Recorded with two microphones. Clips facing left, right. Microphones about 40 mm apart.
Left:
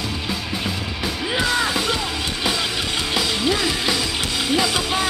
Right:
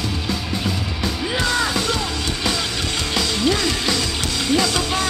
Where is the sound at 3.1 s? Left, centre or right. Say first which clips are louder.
Right 1 dB; centre.